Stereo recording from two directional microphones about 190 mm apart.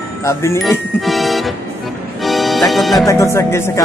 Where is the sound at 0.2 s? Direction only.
15° left (ahead or behind).